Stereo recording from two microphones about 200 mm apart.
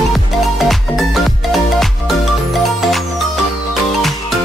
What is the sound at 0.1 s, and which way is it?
Music, centre (ahead or behind).